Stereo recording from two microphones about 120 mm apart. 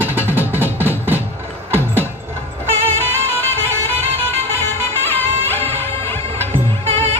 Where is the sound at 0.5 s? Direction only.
15° right (ahead or behind).